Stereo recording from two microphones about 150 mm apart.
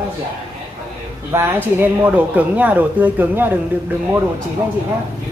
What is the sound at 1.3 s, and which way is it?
Speech, 15° right (ahead or behind).